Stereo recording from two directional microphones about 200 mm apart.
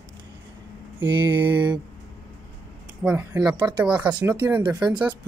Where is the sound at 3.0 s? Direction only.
5° right (ahead or behind).